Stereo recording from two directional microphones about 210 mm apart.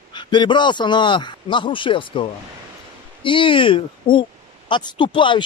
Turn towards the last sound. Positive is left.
turn(degrees=25)  # may be behind; listen again after turning